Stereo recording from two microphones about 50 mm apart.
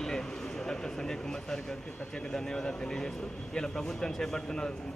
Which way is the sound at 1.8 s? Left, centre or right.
Left.